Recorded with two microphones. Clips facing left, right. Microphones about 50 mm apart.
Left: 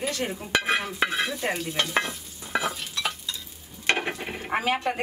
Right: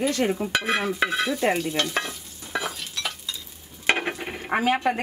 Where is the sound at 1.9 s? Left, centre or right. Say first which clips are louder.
Left 2 dB; centre.